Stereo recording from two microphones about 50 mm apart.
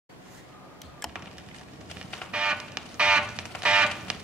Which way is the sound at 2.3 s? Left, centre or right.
Centre.